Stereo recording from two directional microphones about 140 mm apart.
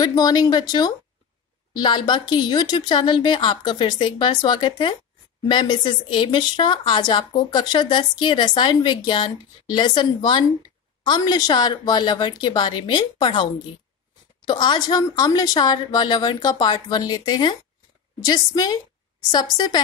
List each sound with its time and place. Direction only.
0.0 s speech: 30° left (ahead or behind)